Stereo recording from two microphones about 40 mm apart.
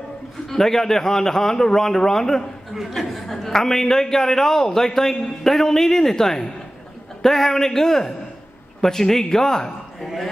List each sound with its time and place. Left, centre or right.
0.5 s a man's voice: centre
9.9 s speech: centre